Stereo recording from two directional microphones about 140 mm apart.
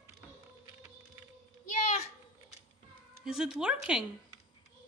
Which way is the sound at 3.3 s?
5° right (ahead or behind).